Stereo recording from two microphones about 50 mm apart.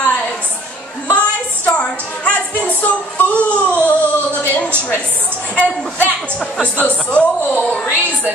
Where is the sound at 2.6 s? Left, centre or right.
Left.